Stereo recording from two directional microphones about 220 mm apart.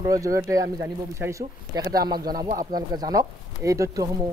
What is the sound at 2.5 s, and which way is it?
Speech, 15° right (ahead or behind).